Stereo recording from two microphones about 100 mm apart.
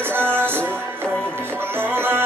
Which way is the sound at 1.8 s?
20° right (ahead or behind).